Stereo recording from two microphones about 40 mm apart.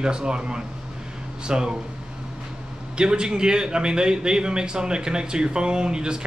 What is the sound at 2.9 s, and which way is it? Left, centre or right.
A man's voice, right.